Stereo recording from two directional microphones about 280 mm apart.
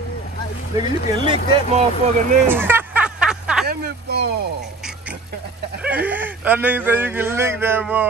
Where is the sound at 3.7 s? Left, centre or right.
Right.